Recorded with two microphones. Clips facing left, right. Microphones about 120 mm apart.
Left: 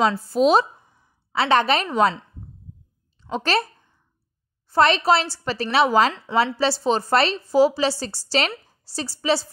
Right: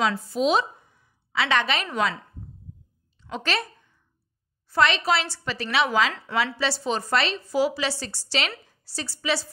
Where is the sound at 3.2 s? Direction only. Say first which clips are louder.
Left 6 dB; 35° left (ahead or behind).